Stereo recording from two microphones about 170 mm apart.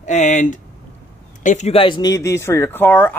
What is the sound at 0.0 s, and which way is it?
Speech, 45° left (ahead or behind).